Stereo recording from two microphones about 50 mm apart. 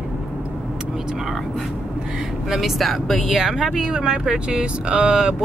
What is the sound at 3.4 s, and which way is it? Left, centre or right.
Speech, centre.